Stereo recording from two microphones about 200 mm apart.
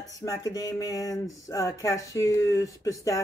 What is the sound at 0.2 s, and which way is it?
Speech, 15° left (ahead or behind).